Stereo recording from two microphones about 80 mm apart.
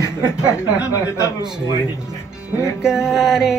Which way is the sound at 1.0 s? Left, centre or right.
Left.